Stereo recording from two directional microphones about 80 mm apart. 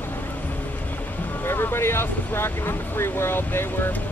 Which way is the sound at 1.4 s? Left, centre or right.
Left.